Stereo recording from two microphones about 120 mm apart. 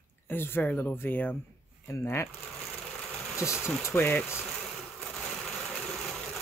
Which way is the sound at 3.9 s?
15° left (ahead or behind).